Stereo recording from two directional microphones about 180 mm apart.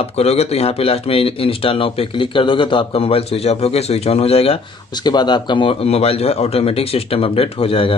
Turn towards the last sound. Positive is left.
turn(degrees=30)  # may be behind; listen again after turning